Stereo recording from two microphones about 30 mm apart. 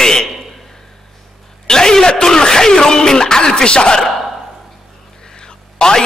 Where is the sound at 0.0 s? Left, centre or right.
Left.